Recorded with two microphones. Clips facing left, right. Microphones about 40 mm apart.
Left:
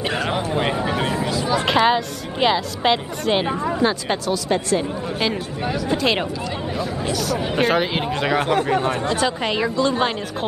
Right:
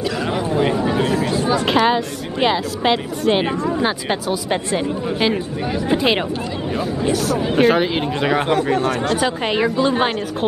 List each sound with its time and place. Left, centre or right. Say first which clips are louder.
0.5 s a sound: right 3 dB; centre
1.8 s a woman's voice: right 1 dB; centre
3.8 s speech: even; centre
7.1 s a woman's voice: right 5 dB; centre